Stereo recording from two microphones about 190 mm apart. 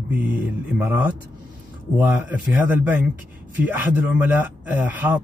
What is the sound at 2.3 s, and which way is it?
Speech, 10° right (ahead or behind).